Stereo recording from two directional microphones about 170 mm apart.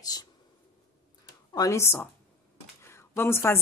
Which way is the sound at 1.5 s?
20° left (ahead or behind).